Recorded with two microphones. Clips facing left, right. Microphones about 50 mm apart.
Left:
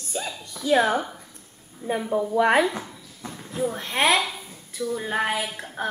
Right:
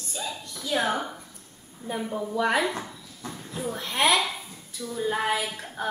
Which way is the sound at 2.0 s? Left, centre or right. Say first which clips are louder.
Left 7 dB; centre.